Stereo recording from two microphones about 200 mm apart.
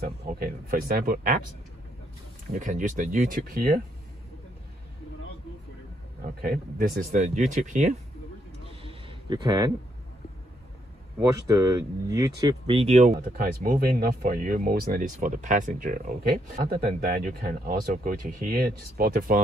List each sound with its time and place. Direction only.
0.0 s speech: 45° right (ahead or behind)
2.5 s speech: 40° right (ahead or behind)
6.4 s speech: 45° right (ahead or behind)
8.8 s a sound: 25° right (ahead or behind)
11.1 s speech: 15° right (ahead or behind); by 13.1 s 35° right (ahead or behind)
13.1 s speech: 50° right (ahead or behind)
17.2 s speech: 40° right (ahead or behind)